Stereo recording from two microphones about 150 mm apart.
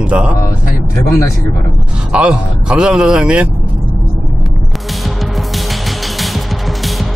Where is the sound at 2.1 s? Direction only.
5° right (ahead or behind).